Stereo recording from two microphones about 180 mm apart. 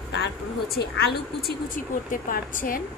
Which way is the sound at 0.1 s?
70° left (ahead or behind).